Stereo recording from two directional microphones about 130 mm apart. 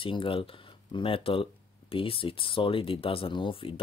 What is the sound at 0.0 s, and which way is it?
Speech, 40° left (ahead or behind).